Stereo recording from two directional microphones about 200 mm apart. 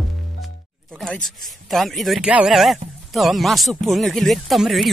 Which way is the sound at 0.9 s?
Centre (ahead or behind).